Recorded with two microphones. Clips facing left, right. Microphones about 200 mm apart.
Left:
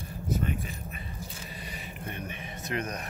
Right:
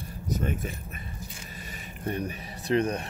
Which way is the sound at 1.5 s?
45° right (ahead or behind).